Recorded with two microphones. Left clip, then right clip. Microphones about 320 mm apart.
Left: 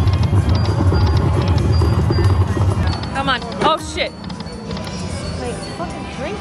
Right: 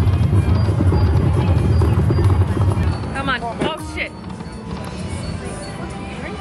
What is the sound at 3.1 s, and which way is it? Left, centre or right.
Music, centre.